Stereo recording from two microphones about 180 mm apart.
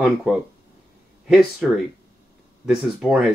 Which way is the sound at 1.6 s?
Centre (ahead or behind).